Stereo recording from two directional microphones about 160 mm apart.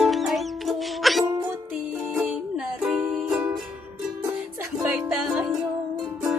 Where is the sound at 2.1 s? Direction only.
5° right (ahead or behind).